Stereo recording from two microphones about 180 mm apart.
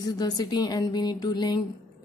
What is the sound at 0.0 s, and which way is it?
A woman's voice, 20° left (ahead or behind).